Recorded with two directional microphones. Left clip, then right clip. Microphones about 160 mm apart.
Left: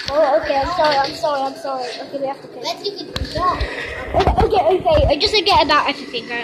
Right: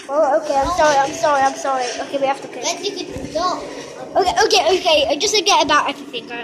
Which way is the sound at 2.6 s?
60° left (ahead or behind).